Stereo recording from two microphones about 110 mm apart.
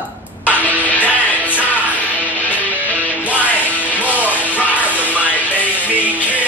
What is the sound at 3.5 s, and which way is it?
Music, 15° left (ahead or behind).